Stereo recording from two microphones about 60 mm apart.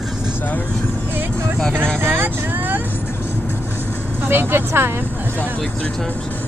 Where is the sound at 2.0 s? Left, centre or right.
Right.